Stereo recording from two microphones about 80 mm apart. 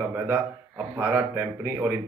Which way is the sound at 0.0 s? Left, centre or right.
Right.